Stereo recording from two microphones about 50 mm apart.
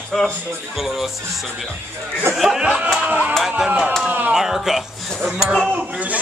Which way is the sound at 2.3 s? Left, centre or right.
Centre.